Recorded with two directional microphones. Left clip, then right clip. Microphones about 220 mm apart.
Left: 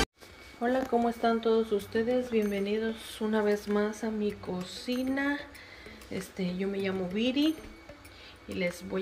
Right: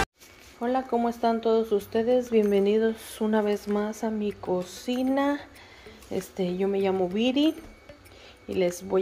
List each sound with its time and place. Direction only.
0.6 s speech: 5° right (ahead or behind)
8.5 s speech: 15° right (ahead or behind)